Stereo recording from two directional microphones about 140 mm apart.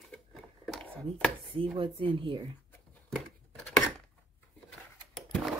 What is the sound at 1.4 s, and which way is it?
Speech, 40° right (ahead or behind).